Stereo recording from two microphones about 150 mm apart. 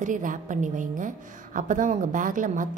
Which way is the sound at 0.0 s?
60° right (ahead or behind).